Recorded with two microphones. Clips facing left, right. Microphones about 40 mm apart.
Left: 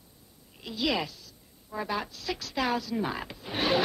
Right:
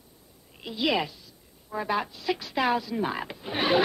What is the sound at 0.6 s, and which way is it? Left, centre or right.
A man's voice, centre.